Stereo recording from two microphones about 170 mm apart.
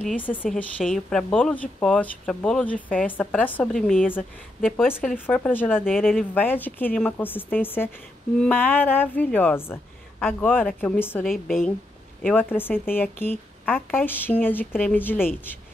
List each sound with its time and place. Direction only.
0.2 s a woman's voice: 10° left (ahead or behind)
5.9 s a woman's voice: centre (ahead or behind)
6.4 s a woman's voice: 10° left (ahead or behind)